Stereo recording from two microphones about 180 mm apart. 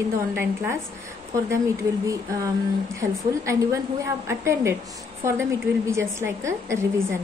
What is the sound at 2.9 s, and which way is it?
Speech, 15° right (ahead or behind).